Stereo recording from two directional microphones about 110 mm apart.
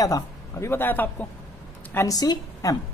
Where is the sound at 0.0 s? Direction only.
35° left (ahead or behind).